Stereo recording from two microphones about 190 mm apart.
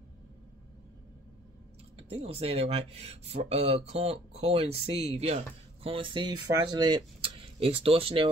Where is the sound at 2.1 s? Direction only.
30° right (ahead or behind).